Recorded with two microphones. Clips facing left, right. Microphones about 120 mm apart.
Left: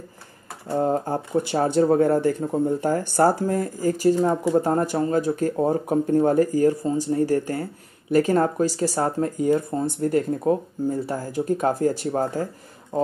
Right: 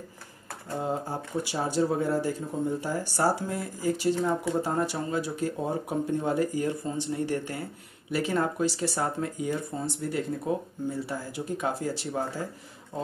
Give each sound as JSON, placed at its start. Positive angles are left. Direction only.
{"t": 0.7, "sound": "speech", "side_deg": 50}